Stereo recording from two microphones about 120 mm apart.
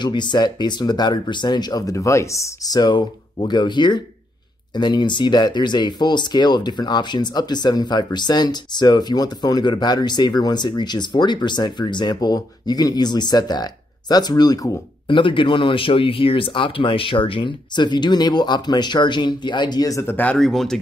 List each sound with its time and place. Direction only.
0.0 s speech: 40° left (ahead or behind)
15.0 s speech: 45° left (ahead or behind); by 20.3 s 15° left (ahead or behind)
20.3 s speech: 5° left (ahead or behind)